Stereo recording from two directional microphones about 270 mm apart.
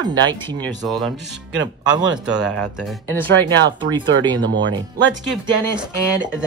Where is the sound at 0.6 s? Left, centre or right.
Centre.